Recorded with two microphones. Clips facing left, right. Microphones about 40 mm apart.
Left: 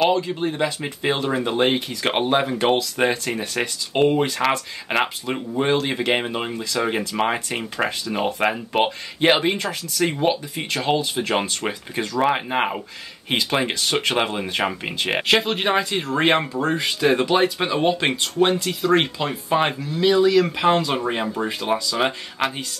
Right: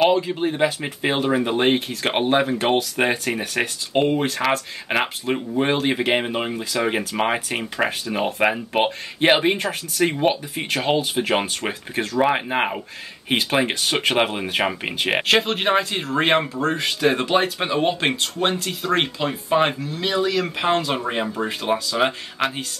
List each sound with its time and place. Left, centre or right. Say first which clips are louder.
0.0 s speech: right 1 dB; centre
3.1 s speech: right 1 dB; right
3.9 s speech: left 2 dB; centre
5.6 s speech: even; centre
9.2 s speech: right 1 dB; centre
11.1 s speech: right 1 dB; centre
13.3 s speech: right 1 dB; centre